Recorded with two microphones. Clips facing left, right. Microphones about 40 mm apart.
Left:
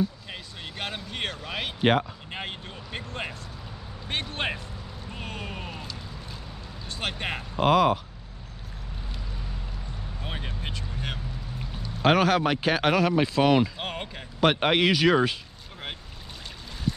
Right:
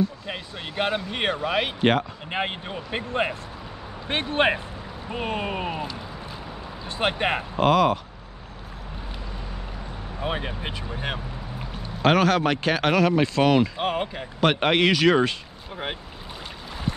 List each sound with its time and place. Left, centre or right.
0.3 s speech: centre
1.8 s speech: centre
2.3 s speech: right
7.6 s speech: centre
10.2 s speech: centre
10.9 s vehicle: centre
12.0 s speech: centre
13.7 s speech: centre